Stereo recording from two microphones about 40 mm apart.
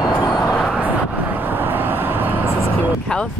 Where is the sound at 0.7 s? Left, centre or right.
Right.